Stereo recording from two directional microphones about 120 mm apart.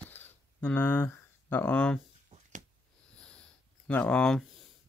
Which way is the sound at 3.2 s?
10° left (ahead or behind).